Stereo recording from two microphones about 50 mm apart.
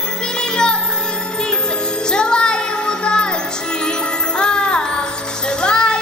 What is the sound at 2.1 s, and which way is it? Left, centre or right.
Music, centre.